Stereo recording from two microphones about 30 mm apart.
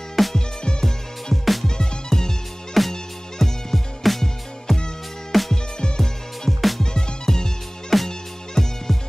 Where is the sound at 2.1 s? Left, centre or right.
Centre.